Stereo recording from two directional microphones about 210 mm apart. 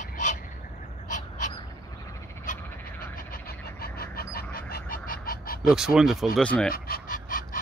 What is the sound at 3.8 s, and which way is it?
Duck, 45° left (ahead or behind).